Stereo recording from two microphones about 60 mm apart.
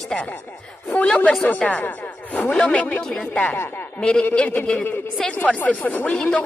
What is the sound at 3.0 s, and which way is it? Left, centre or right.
Speech, centre.